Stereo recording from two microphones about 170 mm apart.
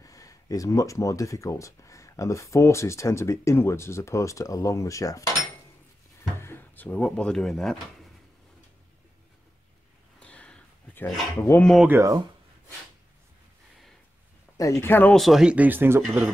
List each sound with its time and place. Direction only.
0.0 s speech: 20° left (ahead or behind)
6.4 s speech: 10° left (ahead or behind)
10.2 s a sound: 5° left (ahead or behind)
11.4 s speech: 10° left (ahead or behind)
11.9 s speech: 20° right (ahead or behind)
14.6 s speech: 15° left (ahead or behind)
15.1 s speech: centre (ahead or behind)